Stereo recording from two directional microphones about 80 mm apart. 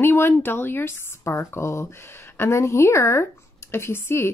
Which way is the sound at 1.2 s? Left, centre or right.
Left.